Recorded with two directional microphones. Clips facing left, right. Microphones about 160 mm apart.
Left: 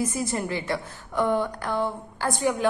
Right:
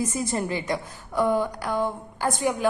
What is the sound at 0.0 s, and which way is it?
A woman's voice, 20° right (ahead or behind).